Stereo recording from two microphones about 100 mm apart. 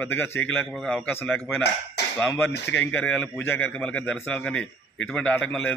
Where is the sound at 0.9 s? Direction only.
15° left (ahead or behind).